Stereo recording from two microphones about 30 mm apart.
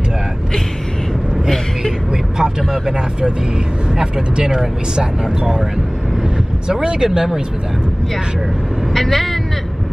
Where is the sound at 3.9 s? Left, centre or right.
Right.